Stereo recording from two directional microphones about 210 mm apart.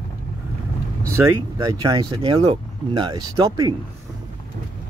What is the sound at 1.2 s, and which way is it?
Speech, 15° right (ahead or behind).